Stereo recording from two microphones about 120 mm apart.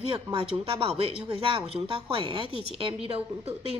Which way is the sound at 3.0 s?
55° right (ahead or behind).